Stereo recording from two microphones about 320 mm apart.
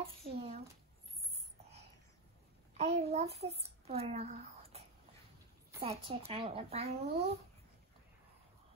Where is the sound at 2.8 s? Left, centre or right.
Centre.